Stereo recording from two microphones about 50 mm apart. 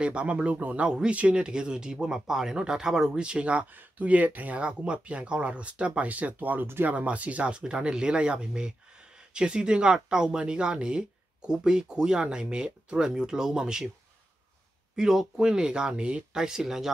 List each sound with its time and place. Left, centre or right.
0.0 s speech: right
0.8 s speech: centre
4.6 s speech: right
15.0 s speech: centre
16.3 s speech: centre